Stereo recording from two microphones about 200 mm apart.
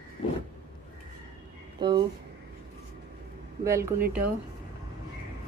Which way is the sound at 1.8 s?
20° right (ahead or behind).